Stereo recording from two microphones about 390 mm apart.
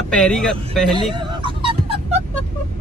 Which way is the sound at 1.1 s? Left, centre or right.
Centre.